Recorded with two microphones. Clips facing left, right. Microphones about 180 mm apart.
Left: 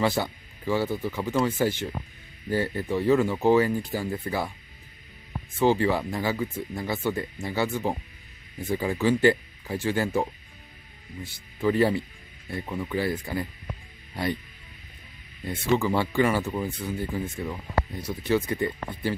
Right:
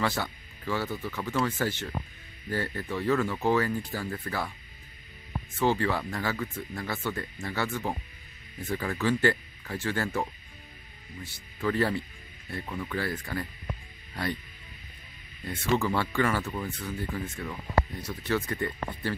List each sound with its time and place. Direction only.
0.0 s speech: 15° left (ahead or behind)
5.6 s speech: 15° left (ahead or behind)
11.6 s speech: 15° left (ahead or behind)
15.4 s speech: 15° left (ahead or behind)